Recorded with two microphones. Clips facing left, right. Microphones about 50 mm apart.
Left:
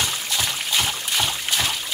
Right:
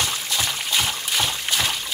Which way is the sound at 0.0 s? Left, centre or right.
Centre.